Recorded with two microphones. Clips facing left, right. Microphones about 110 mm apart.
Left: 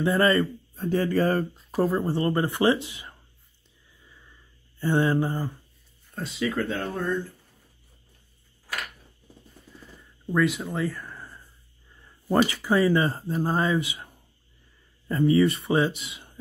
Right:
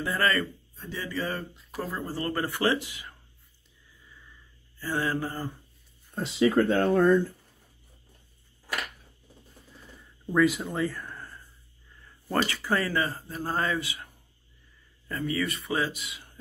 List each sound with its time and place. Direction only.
0.0 s speech: 25° left (ahead or behind)
0.7 s speech: 50° left (ahead or behind)
1.7 s speech: 25° left (ahead or behind)
4.0 s a sound: 20° left (ahead or behind)
4.7 s speech: 25° left (ahead or behind)
6.1 s speech: 25° right (ahead or behind)
10.2 s speech: centre (ahead or behind)
12.0 s speech: 15° left (ahead or behind)